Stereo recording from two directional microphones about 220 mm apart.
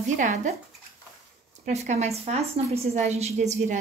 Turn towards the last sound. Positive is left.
turn(degrees=-35)  # may be behind; listen again after turning